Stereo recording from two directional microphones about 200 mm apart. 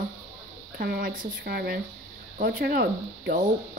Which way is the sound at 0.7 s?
45° right (ahead or behind).